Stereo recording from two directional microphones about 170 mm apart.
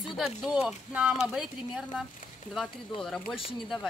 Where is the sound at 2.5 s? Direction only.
Centre (ahead or behind).